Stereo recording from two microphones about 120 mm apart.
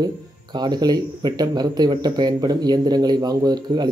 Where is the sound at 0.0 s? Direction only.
35° right (ahead or behind).